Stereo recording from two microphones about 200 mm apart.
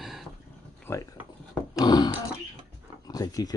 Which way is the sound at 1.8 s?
20° left (ahead or behind).